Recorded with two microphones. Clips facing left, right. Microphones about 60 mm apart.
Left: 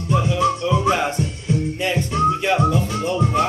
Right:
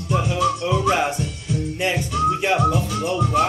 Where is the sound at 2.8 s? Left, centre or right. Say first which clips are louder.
Left 1 dB; left.